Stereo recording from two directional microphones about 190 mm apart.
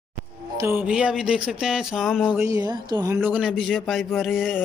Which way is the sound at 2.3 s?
15° right (ahead or behind).